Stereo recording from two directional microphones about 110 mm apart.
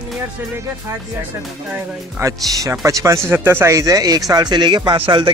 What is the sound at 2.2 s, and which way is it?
Speech, 30° right (ahead or behind).